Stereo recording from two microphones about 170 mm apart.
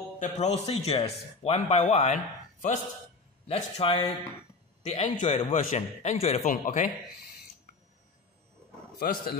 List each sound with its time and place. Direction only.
0.2 s a man's voice: 40° left (ahead or behind)
3.4 s a man's voice: 35° left (ahead or behind)
9.0 s speech: 60° left (ahead or behind)